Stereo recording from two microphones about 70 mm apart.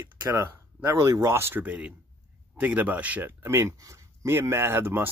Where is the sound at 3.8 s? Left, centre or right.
Right.